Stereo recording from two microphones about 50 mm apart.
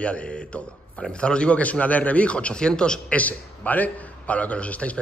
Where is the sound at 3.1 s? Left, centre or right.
Left.